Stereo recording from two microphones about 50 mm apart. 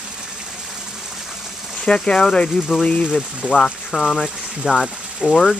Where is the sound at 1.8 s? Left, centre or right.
Centre.